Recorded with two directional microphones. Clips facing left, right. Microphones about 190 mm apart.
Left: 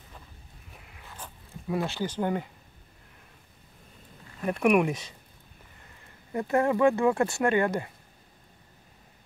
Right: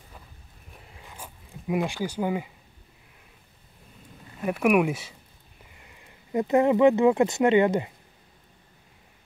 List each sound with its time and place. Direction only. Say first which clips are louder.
1.0 s zipper: even; 10° right (ahead or behind)
4.4 s speech: right 1 dB; 5° right (ahead or behind)
6.3 s speech: right 4 dB; 20° right (ahead or behind)